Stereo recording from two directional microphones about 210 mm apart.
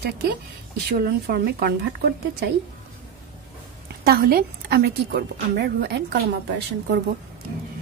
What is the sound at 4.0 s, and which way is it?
A woman's voice, 45° right (ahead or behind).